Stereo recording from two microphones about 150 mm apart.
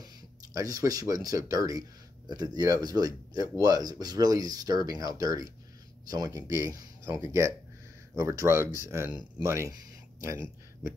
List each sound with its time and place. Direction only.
0.0 s speech: 25° right (ahead or behind)